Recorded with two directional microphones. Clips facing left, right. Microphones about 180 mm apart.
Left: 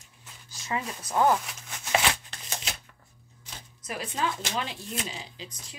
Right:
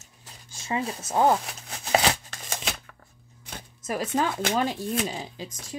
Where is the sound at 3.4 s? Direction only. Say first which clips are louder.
Right 6 dB; 50° right (ahead or behind).